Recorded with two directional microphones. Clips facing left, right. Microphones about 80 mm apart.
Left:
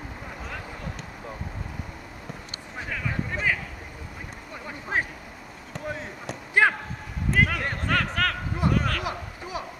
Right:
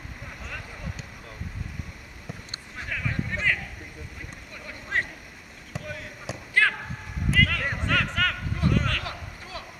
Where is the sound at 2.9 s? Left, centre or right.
Centre.